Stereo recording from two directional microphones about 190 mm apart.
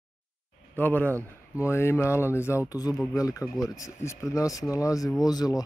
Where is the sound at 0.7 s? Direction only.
10° left (ahead or behind).